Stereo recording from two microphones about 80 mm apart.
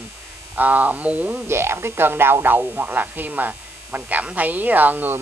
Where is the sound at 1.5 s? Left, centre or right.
Right.